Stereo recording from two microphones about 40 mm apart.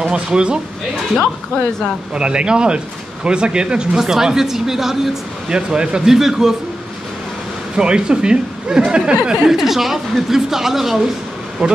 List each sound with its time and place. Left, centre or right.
0.1 s speech: right
1.1 s speech: centre
2.1 s speech: right
4.0 s speech: centre
5.5 s speech: right
7.7 s speech: right
9.5 s speech: centre